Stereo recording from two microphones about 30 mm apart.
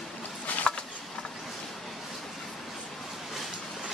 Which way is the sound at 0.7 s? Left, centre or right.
Left.